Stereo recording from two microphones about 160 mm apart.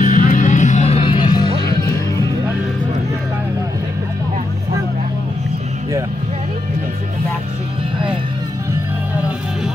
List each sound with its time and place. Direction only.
0.0 s music: 55° left (ahead or behind); by 2.2 s 25° left (ahead or behind)